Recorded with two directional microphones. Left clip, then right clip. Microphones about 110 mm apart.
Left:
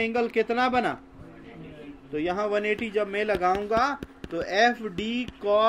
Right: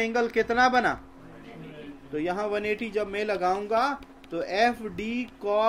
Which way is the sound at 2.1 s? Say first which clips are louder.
Left 2 dB; 20° left (ahead or behind).